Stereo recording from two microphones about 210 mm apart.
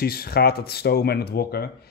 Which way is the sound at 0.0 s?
45° left (ahead or behind).